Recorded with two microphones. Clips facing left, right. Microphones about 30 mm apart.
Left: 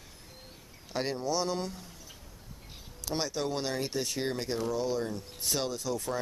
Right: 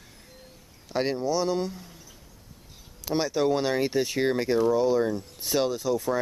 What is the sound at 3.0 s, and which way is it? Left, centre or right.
Speech, centre.